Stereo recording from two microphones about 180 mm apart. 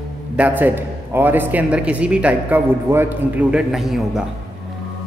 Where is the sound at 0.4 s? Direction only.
10° right (ahead or behind).